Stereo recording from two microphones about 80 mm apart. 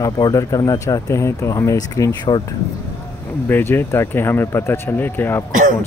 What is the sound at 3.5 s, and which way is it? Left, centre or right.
Speech, left.